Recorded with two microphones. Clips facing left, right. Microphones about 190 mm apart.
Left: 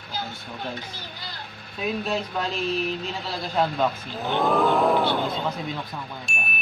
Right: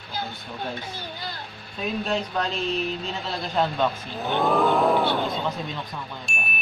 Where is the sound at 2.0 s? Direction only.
Centre (ahead or behind).